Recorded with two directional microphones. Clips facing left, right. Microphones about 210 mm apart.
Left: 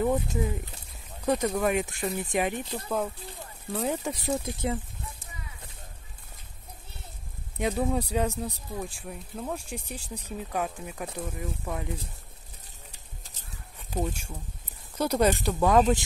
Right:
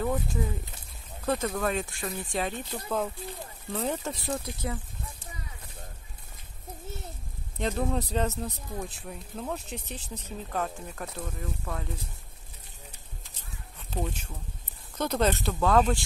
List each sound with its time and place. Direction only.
0.0 s speech: 20° left (ahead or behind)
7.5 s speech: 10° left (ahead or behind)
13.7 s speech: 10° left (ahead or behind)